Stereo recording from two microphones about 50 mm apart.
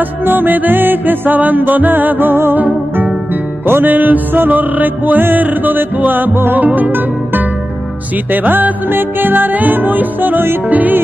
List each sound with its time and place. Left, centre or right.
0.2 s music: right
3.6 s music: right